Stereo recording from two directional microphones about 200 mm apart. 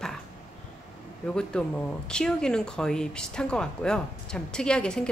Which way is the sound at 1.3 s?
5° left (ahead or behind).